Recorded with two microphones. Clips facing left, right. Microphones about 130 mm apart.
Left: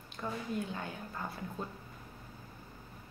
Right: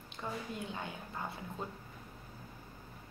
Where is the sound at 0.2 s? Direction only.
15° right (ahead or behind).